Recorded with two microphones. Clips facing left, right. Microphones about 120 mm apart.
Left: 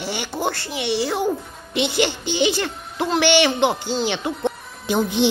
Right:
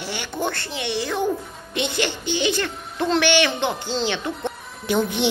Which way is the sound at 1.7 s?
15° left (ahead or behind).